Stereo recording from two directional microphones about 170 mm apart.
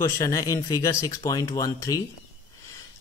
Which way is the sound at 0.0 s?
20° left (ahead or behind).